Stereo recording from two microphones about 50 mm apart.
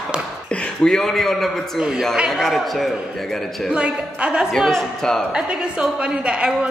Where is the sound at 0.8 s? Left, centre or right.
Centre.